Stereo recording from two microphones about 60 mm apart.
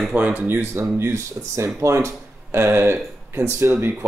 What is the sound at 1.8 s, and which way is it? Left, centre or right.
Speech, right.